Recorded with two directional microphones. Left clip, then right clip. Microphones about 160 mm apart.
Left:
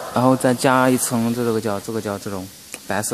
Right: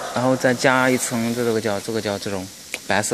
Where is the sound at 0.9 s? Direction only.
35° left (ahead or behind).